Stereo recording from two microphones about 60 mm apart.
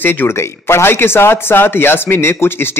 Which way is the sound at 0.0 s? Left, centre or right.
Left.